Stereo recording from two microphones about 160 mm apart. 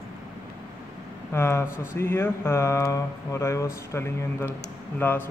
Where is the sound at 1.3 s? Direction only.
15° left (ahead or behind).